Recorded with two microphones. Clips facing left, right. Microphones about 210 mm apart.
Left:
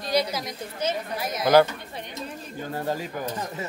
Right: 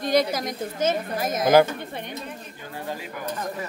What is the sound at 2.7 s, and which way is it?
Speech, 40° left (ahead or behind).